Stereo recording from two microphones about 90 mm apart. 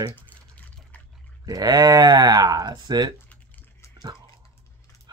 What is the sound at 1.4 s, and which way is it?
Speech, 45° right (ahead or behind).